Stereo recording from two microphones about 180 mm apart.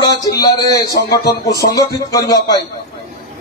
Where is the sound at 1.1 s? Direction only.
60° left (ahead or behind).